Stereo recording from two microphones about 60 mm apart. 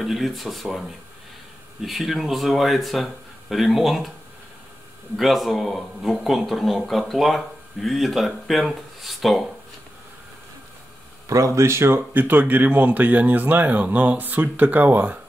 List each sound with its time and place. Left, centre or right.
0.0 s a man's voice: centre
5.1 s a man's voice: centre
11.2 s a man's voice: right
12.1 s speech: right